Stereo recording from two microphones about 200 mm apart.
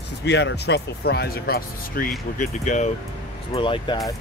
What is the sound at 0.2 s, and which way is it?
Speech, 60° left (ahead or behind).